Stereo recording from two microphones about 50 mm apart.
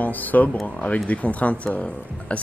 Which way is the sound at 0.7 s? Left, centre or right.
Left.